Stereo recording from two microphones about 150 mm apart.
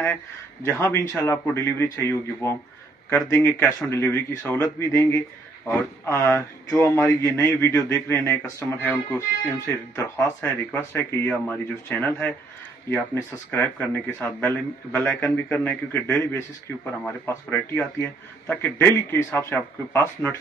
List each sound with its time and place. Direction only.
0.0 s speech: 15° left (ahead or behind)